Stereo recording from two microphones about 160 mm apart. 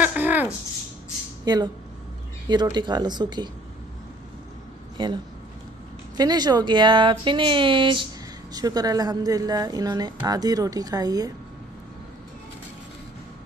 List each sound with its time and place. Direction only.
0.0 s a sound: 10° right (ahead or behind)
1.4 s speech: 25° right (ahead or behind)
4.9 s speech: 30° right (ahead or behind)